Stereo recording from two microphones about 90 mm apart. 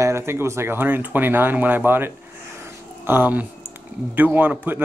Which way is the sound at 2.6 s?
25° right (ahead or behind).